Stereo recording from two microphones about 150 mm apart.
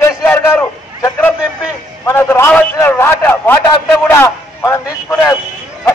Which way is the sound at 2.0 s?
15° left (ahead or behind).